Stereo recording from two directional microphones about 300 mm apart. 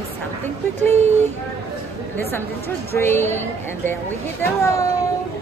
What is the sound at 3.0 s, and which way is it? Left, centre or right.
Speech, centre.